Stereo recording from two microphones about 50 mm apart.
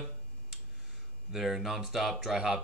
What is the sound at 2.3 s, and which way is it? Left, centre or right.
Speech, centre.